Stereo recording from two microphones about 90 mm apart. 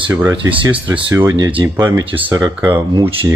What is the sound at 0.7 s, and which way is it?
Speech, 15° right (ahead or behind).